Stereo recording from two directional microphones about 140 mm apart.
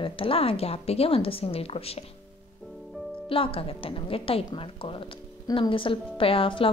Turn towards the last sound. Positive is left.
turn(degrees=40)  # may be behind; listen again after turning